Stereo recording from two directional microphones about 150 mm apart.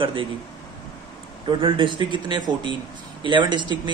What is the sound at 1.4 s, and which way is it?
Speech, 35° right (ahead or behind).